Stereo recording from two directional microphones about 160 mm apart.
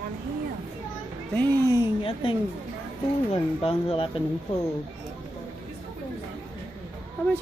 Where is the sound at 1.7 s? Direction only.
35° left (ahead or behind).